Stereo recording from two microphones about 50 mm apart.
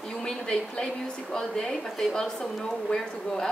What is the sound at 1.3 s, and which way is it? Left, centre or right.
Speech, centre.